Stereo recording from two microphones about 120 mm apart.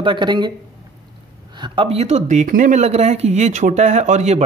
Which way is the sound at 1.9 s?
65° right (ahead or behind).